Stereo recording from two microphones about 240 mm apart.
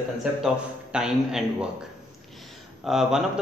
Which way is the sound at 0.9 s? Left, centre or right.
Centre.